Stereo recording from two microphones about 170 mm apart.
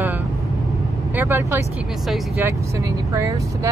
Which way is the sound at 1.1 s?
15° right (ahead or behind).